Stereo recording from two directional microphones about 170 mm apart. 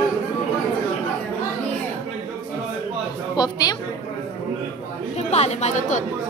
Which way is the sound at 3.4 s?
25° left (ahead or behind).